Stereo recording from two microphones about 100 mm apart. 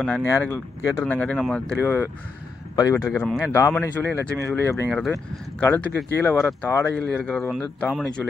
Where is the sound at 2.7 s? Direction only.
35° left (ahead or behind).